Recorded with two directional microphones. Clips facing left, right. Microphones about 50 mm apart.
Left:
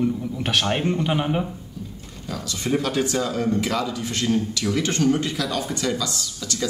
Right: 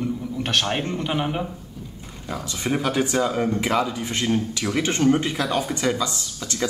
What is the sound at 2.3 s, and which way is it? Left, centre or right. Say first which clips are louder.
Speech: left 1 dB; right.